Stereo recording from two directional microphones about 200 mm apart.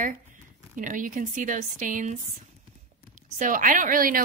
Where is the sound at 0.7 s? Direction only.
40° right (ahead or behind).